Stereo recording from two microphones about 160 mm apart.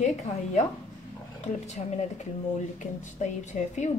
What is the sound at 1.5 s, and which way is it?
A woman's voice, 45° left (ahead or behind).